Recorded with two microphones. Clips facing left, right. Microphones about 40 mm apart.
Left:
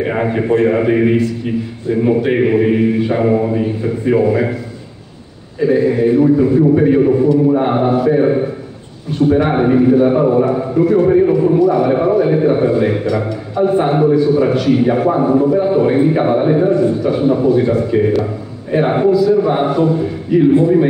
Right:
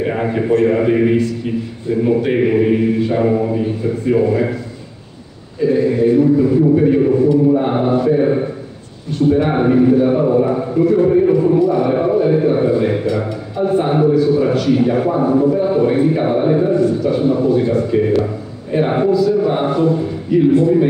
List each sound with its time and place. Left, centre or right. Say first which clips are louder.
0.2 s a man's voice: left 1 dB; centre
5.6 s a man's voice: left 1 dB; centre
7.7 s a man's voice: left 2 dB; centre
8.1 s a man's voice: left 2 dB; centre
10.4 s a man's voice: left 1 dB; centre
11.1 s a man's voice: left 1 dB; centre
11.3 s a man's voice: left 1 dB; centre
20.5 s a man's voice: left 1 dB; left